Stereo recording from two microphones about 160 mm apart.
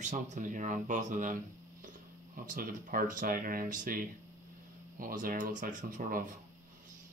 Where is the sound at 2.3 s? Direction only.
60° right (ahead or behind).